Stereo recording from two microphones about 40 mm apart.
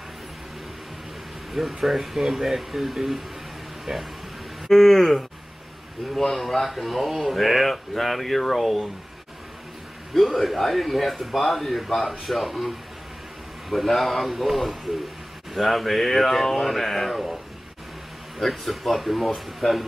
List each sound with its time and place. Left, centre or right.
1.5 s speech: centre
3.9 s speech: centre
4.6 s a sound: centre
6.1 s speech: centre
10.1 s speech: centre
18.4 s speech: centre